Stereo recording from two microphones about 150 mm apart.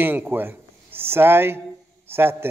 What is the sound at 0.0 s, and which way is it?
A man's voice, 15° right (ahead or behind).